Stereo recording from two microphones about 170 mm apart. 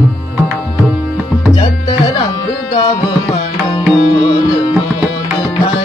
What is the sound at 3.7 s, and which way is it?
Music, 30° left (ahead or behind).